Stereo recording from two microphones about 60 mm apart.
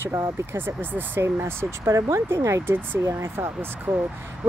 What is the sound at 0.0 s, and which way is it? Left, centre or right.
Speech, right.